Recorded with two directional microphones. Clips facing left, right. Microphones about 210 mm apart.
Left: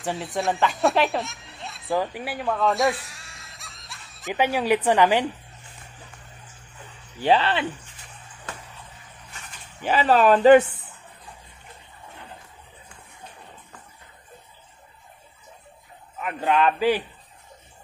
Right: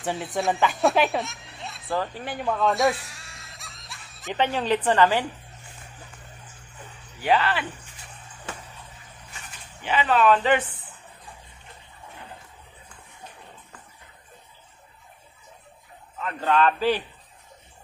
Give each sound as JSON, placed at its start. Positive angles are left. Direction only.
{"t": 0.0, "sound": "speech", "side_deg": 0}
{"t": 7.2, "sound": "speech", "side_deg": 30}
{"t": 9.8, "sound": "speech", "side_deg": 40}
{"t": 16.2, "sound": "a man's voice", "side_deg": 15}